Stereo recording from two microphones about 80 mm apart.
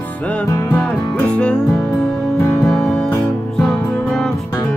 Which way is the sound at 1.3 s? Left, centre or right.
Centre.